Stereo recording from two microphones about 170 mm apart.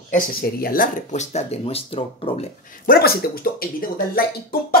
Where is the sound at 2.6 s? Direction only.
55° left (ahead or behind).